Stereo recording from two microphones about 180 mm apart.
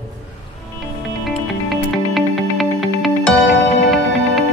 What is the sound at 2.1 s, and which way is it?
Music, centre (ahead or behind).